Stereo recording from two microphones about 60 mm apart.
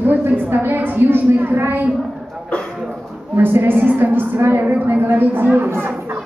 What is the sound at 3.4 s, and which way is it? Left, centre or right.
A woman's voice, right.